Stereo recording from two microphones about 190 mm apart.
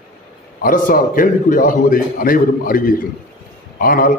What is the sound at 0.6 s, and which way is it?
A man's voice, 45° left (ahead or behind).